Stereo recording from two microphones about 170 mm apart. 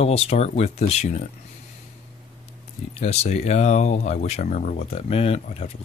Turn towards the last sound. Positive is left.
turn(degrees=35)  # may be behind; listen again after turning